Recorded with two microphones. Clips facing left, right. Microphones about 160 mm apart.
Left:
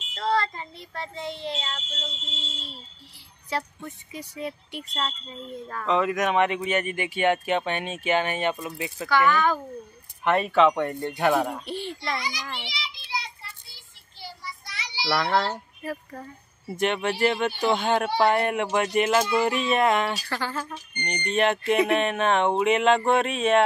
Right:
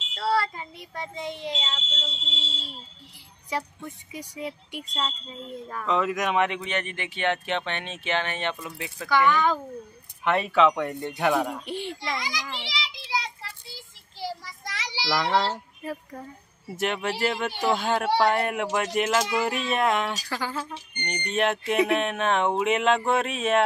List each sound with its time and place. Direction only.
0.1 s child singing: 10° right (ahead or behind)
3.4 s child singing: 10° right (ahead or behind)
5.9 s speech: centre (ahead or behind)
9.3 s child singing: 15° right (ahead or behind)
10.2 s a woman's voice: centre (ahead or behind)
11.6 s child singing: 15° right (ahead or behind)
12.2 s child singing: 90° right
15.0 s a child's voice: 15° right (ahead or behind)
16.1 s a woman's voice: centre (ahead or behind)